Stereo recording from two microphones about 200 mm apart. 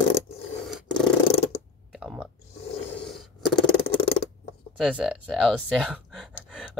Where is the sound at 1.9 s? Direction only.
5° right (ahead or behind).